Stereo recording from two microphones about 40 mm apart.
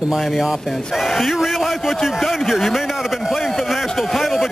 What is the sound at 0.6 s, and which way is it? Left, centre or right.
Speech, centre.